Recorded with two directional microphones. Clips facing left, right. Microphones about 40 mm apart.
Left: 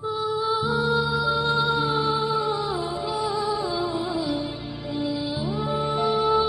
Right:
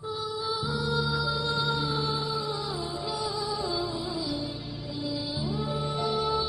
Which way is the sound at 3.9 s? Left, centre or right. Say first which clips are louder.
Left 6 dB; left.